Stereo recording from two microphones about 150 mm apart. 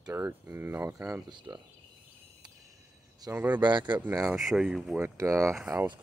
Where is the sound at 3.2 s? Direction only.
25° right (ahead or behind).